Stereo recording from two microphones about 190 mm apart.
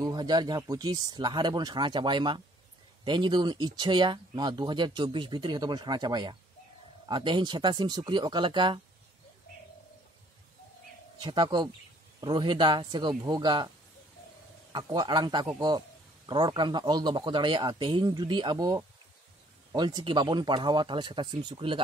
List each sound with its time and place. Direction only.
0.0 s speech: 20° right (ahead or behind)
11.1 s speech: 20° right (ahead or behind)
14.7 s speech: 25° right (ahead or behind)